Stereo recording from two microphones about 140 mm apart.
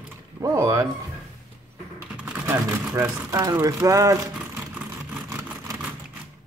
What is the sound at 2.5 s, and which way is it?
Speech, 20° right (ahead or behind).